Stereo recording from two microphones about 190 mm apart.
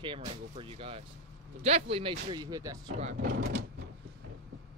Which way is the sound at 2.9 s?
40° right (ahead or behind).